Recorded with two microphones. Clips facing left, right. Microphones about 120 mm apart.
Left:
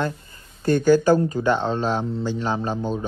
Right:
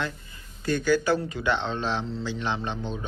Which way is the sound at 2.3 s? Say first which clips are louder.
Left 5 dB; 40° left (ahead or behind).